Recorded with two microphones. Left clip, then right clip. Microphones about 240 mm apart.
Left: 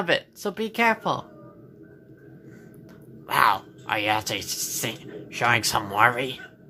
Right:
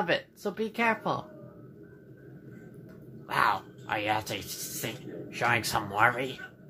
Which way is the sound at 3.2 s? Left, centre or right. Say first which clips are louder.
Left 6 dB; left.